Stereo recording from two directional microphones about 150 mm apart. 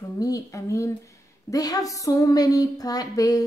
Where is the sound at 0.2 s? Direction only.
20° left (ahead or behind).